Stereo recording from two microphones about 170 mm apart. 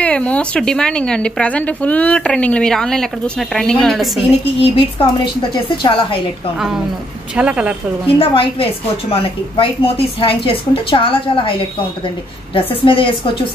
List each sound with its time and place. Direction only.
0.0 s speech: 5° left (ahead or behind)
4.6 s a woman's voice: 30° left (ahead or behind)
7.3 s a woman's voice: 5° right (ahead or behind)
8.2 s a woman's voice: 30° left (ahead or behind)
12.5 s a woman's voice: 30° left (ahead or behind)